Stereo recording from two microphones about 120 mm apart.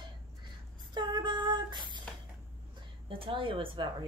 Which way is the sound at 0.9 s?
40° right (ahead or behind).